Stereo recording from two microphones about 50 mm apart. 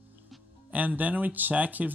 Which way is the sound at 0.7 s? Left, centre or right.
Right.